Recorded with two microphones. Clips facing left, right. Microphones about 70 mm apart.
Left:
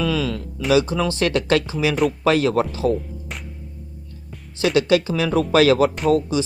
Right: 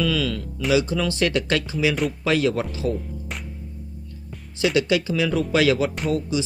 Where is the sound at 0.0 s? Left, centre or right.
Left.